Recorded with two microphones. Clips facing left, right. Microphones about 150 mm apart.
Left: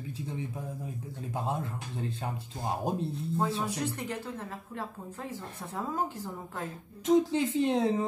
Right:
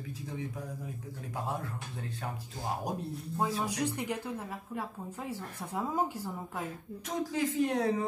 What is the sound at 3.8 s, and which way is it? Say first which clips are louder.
A woman's voice: right 1 dB; 15° right (ahead or behind).